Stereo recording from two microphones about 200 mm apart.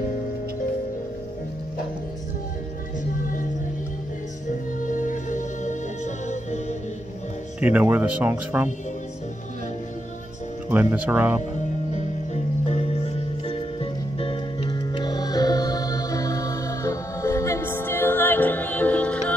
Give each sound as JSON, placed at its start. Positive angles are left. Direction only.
{"t": 4.5, "sound": "music", "side_deg": 40}
{"t": 7.6, "sound": "speech", "side_deg": -10}
{"t": 10.7, "sound": "speech", "side_deg": -10}
{"t": 12.6, "sound": "music", "side_deg": 30}